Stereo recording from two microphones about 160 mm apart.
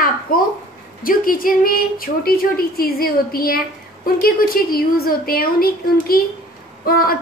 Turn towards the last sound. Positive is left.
turn(degrees=65)  # may be behind; listen again after turning